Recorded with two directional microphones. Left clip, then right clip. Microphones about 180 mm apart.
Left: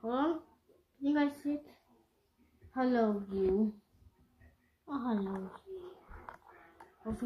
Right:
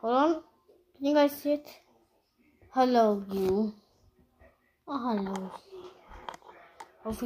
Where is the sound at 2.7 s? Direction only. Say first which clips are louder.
Right 8 dB; 50° right (ahead or behind).